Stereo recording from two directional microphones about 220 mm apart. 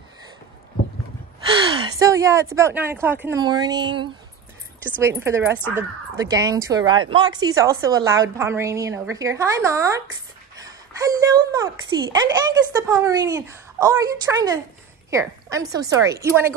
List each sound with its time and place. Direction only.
1.5 s a child's voice: 20° right (ahead or behind)